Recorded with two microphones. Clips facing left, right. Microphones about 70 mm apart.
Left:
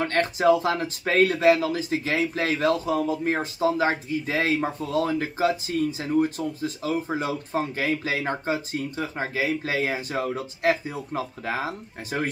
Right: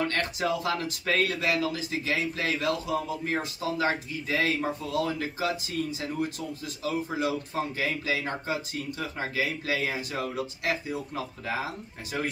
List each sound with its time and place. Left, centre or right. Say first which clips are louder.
0.0 s speech: left 7 dB; left